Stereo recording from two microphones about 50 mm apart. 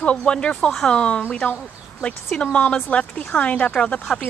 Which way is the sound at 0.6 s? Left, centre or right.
Centre.